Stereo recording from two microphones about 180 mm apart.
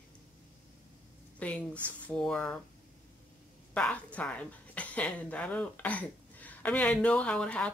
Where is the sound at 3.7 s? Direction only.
5° left (ahead or behind).